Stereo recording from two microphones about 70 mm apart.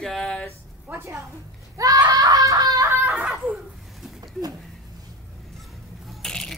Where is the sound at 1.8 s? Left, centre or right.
Right.